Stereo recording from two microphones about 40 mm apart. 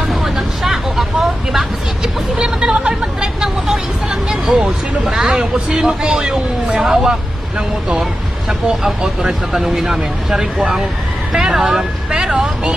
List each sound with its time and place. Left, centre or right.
0.0 s vehicle: centre
2.3 s a sound: centre
3.3 s vehicle: centre
4.1 s a sound: centre
5.1 s a man's voice: centre
8.5 s speech: centre
12.1 s vehicle: right